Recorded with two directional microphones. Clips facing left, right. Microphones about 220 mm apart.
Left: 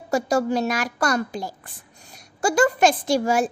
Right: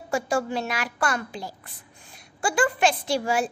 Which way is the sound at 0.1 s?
40° left (ahead or behind).